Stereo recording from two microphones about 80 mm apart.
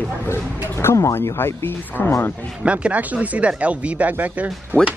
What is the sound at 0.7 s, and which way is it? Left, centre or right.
Speech, left.